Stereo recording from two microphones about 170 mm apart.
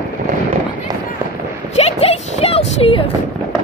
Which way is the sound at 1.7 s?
35° left (ahead or behind).